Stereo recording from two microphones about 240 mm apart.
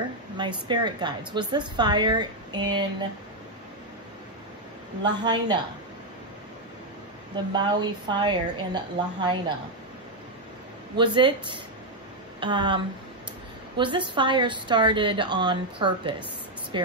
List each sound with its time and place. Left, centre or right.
0.4 s a woman's voice: centre
5.0 s a woman's voice: centre
7.5 s a woman's voice: centre
11.0 s a woman's voice: right